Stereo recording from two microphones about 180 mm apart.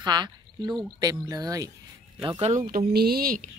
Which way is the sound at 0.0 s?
25° right (ahead or behind).